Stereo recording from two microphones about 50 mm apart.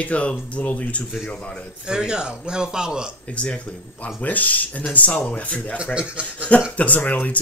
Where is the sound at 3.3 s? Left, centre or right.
Left.